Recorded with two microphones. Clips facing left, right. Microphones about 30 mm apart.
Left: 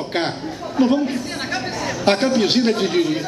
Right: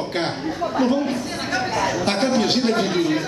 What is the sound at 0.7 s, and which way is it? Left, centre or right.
A man's voice, centre.